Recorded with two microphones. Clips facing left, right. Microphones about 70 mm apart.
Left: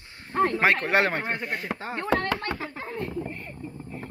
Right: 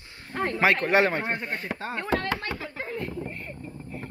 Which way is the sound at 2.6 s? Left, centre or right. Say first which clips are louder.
Even; left.